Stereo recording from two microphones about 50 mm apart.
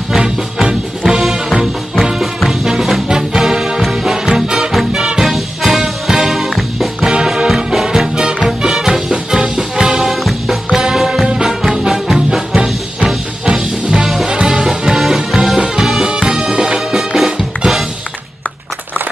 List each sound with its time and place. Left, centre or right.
0.2 s music: centre
1.0 s music: centre
4.7 s swing music: centre
5.3 s music: centre
7.0 s music: centre